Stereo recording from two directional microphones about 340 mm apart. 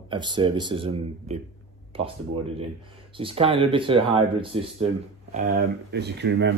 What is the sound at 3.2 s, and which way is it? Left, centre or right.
Speech, centre.